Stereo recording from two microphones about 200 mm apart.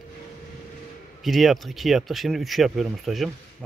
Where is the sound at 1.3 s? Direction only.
Centre (ahead or behind).